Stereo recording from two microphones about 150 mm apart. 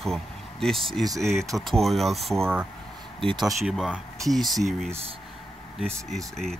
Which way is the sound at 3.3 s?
30° right (ahead or behind).